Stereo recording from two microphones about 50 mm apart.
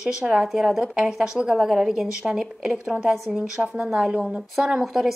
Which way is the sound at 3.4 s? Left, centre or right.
Centre.